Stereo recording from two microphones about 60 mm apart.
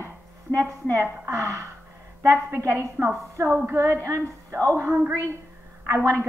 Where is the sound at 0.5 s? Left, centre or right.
Right.